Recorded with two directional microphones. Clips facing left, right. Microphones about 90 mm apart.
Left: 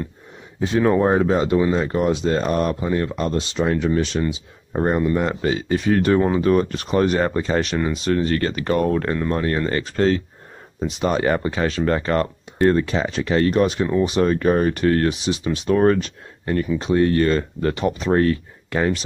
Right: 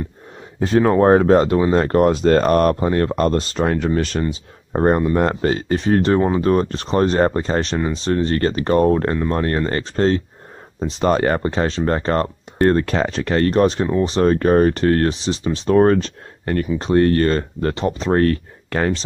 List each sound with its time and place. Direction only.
0.6 s speech: 40° right (ahead or behind)
5.1 s speech: 45° right (ahead or behind)
18.2 s speech: 50° right (ahead or behind)